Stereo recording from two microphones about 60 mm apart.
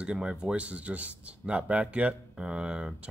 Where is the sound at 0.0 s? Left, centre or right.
Centre.